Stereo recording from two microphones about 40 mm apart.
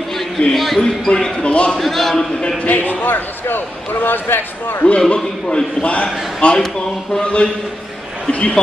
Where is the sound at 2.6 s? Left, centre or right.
Left.